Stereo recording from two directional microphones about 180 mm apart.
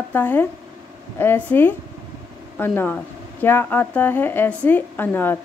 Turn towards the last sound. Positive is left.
turn(degrees=10)  # may be behind; listen again after turning